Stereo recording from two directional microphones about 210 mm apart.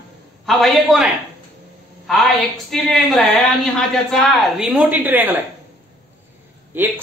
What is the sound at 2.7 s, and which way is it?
Speech, centre (ahead or behind).